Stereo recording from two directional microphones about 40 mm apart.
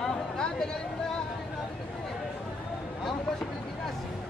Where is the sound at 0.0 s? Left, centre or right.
Centre.